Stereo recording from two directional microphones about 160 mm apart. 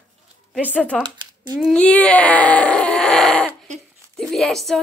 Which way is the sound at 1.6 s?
5° left (ahead or behind).